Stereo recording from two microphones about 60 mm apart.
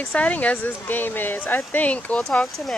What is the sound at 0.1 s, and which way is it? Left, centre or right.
Speech, left.